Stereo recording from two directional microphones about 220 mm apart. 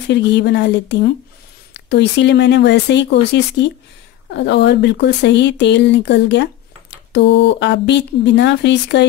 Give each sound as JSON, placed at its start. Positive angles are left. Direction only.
{"t": 0.1, "sound": "speech", "side_deg": 50}